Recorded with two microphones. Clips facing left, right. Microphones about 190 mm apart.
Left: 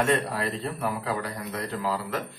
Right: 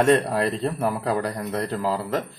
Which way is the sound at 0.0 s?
45° right (ahead or behind).